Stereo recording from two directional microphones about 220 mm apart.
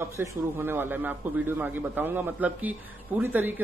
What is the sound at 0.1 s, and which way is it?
A man's voice, 15° right (ahead or behind).